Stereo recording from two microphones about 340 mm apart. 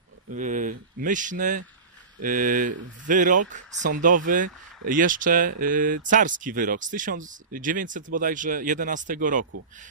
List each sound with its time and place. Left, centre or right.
0.3 s speech: right